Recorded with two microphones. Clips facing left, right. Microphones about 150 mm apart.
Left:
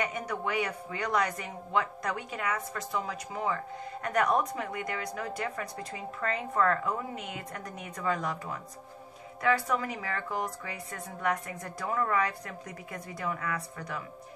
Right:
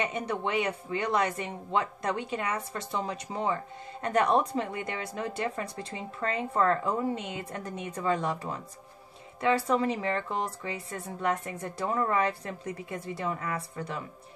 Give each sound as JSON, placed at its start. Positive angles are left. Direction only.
{"t": 0.0, "sound": "speech", "side_deg": -25}